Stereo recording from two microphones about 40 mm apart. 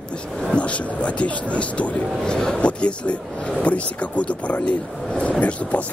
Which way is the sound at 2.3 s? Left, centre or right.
Left.